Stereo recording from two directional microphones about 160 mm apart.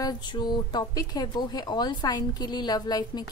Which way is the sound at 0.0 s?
25° left (ahead or behind).